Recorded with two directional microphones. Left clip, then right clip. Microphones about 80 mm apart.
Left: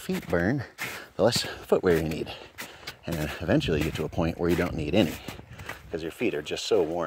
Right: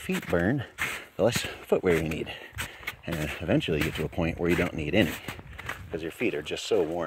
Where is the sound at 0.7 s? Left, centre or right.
Centre.